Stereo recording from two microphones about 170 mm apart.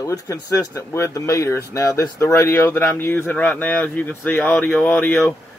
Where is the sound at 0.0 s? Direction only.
20° left (ahead or behind).